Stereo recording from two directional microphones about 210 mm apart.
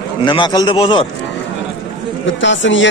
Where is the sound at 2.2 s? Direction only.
60° left (ahead or behind).